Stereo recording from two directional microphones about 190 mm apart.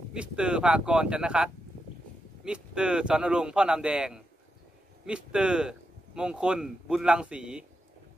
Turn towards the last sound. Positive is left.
turn(degrees=-5)  # may be behind; listen again after turning